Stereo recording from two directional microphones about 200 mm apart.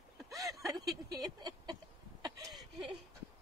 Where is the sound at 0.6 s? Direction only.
20° right (ahead or behind).